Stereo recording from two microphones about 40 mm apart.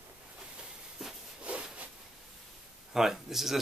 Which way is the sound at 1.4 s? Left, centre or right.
Right.